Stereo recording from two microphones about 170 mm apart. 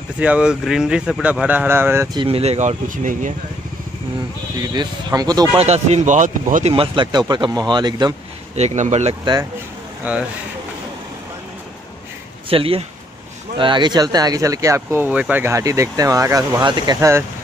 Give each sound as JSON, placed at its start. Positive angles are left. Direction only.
{"t": 0.2, "sound": "speech", "side_deg": -5}
{"t": 2.1, "sound": "speech", "side_deg": -35}
{"t": 4.6, "sound": "speech", "side_deg": -20}
{"t": 5.6, "sound": "speech", "side_deg": -40}
{"t": 6.7, "sound": "speech", "side_deg": -30}
{"t": 8.5, "sound": "speech", "side_deg": -40}
{"t": 9.2, "sound": "speech", "side_deg": -25}
{"t": 10.1, "sound": "speech", "side_deg": -10}
{"t": 12.4, "sound": "speech", "side_deg": -35}